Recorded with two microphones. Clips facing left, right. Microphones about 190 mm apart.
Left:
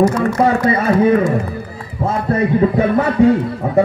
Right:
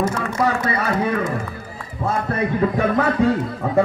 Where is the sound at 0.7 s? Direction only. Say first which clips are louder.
Left 7 dB; 25° left (ahead or behind).